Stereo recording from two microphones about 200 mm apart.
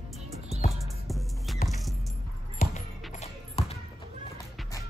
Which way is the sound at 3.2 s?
30° left (ahead or behind).